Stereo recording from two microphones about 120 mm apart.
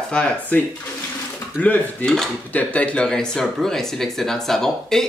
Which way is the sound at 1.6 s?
10° left (ahead or behind).